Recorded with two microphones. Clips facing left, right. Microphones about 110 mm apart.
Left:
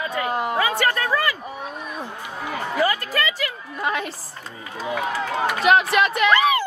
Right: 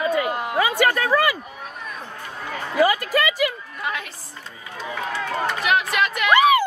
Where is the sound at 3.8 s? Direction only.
35° left (ahead or behind).